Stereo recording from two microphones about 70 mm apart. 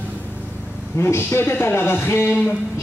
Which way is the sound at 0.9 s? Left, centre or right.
Left.